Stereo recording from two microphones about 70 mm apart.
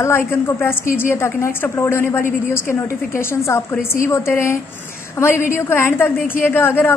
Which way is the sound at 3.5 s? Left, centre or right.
Left.